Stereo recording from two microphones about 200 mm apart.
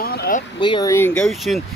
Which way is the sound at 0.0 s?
50° left (ahead or behind).